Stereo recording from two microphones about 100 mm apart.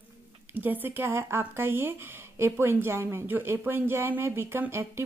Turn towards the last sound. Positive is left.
turn(degrees=-25)  # may be behind; listen again after turning